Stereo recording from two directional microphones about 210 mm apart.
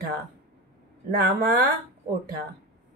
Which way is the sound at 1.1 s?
50° right (ahead or behind).